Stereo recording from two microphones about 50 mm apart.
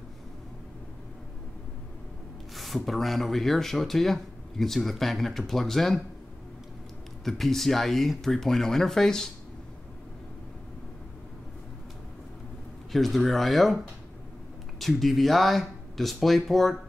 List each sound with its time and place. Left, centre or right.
2.5 s speech: centre
7.2 s speech: centre
12.9 s speech: centre
14.8 s speech: centre